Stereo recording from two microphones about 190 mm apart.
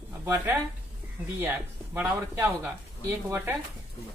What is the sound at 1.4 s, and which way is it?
Speech, 10° right (ahead or behind).